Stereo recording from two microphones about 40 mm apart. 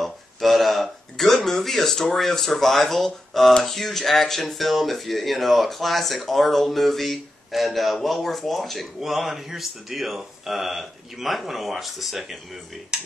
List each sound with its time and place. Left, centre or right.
0.0 s a sound: centre
3.6 s speech: centre
12.9 s speech: centre